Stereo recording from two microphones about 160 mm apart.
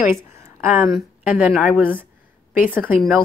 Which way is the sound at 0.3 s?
15° right (ahead or behind).